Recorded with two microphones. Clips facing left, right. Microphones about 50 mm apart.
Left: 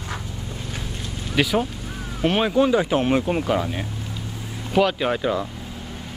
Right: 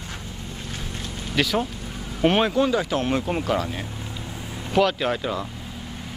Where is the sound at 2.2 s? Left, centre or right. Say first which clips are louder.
Right 1 dB; centre.